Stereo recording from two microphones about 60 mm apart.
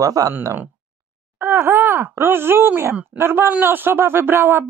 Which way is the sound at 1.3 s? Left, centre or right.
Right.